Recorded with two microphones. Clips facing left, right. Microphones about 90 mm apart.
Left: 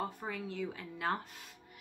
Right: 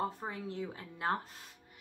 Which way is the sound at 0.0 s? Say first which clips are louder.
Right 2 dB; 30° right (ahead or behind).